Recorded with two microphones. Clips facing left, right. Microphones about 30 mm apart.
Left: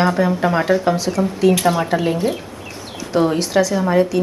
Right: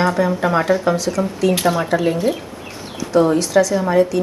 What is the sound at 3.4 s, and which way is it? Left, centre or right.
Speech, left.